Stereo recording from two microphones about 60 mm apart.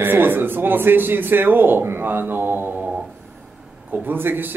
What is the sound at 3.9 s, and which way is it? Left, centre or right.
Speech, right.